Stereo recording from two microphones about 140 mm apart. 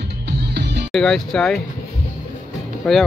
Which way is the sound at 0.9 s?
Centre (ahead or behind).